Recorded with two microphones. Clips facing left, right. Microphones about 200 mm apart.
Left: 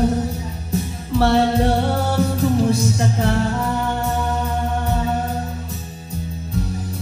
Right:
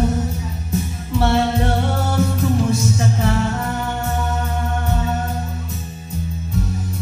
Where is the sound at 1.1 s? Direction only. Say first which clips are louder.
Left 2 dB; 35° left (ahead or behind).